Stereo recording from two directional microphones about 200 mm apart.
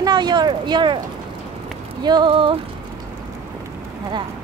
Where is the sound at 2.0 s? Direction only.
20° right (ahead or behind).